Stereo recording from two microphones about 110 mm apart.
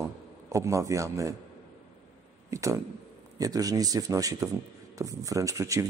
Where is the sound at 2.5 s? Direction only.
30° right (ahead or behind).